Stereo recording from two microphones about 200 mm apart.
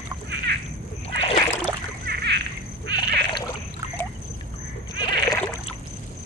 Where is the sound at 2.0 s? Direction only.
55° right (ahead or behind).